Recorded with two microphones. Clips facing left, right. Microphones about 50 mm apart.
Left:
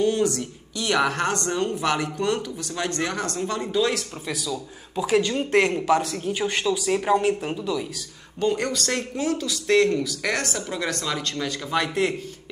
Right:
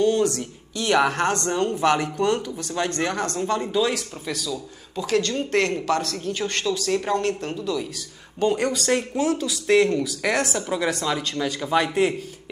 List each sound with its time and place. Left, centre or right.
0.0 s speech: centre
0.4 s speech: centre
4.5 s speech: centre
8.4 s speech: centre